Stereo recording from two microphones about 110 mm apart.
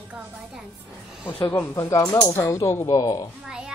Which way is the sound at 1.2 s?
25° left (ahead or behind).